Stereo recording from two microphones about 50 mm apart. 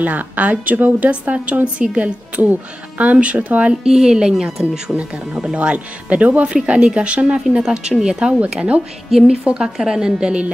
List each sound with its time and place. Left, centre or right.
0.0 s a woman's voice: right
3.8 s a woman's voice: centre